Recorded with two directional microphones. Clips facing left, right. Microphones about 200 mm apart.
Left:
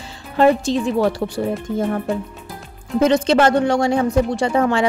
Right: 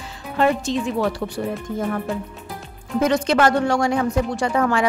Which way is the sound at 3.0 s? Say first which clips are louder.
Left 3 dB; 25° left (ahead or behind).